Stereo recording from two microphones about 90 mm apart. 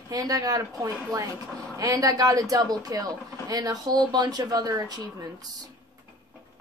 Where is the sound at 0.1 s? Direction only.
45° right (ahead or behind).